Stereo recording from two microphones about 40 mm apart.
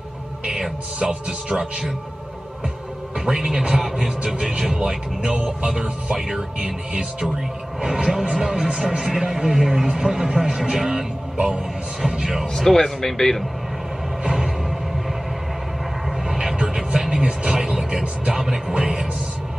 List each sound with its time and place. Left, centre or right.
1.0 s speech: right
3.3 s speech: centre
5.2 s speech: right
6.1 s speech: centre
6.6 s speech: right
7.8 s speech: centre
12.5 s a man's voice: centre
14.2 s music: centre
16.3 s a sound: centre
16.6 s music: centre
17.6 s speech: centre